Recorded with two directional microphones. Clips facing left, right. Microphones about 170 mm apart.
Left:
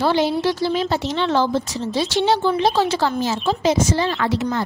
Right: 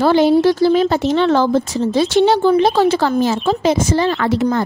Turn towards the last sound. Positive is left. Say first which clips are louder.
# right 5 dB
turn(degrees=-50)  # may be behind; listen again after turning